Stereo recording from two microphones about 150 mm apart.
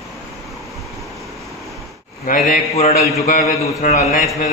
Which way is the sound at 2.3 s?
60° left (ahead or behind).